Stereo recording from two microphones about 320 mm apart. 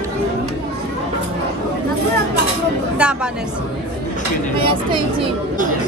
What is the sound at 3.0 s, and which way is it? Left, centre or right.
Speech, centre.